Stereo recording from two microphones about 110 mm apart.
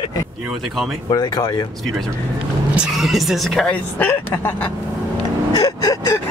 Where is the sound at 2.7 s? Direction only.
5° right (ahead or behind).